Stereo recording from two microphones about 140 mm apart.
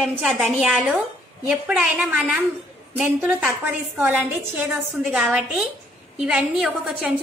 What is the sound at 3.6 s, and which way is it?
A woman's voice, 10° right (ahead or behind).